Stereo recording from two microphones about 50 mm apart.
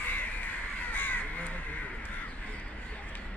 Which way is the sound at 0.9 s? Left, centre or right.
Left.